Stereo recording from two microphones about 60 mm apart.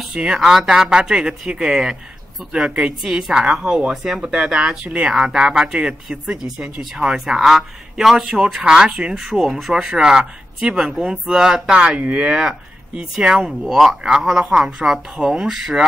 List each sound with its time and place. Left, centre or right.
0.1 s speech: centre
5.1 s speech: centre
12.0 s speech: right